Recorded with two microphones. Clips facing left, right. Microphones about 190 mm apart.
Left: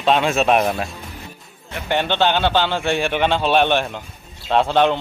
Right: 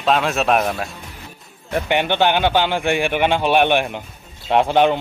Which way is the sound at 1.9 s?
15° right (ahead or behind).